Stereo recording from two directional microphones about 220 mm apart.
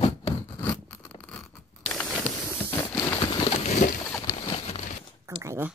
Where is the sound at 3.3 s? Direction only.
30° left (ahead or behind).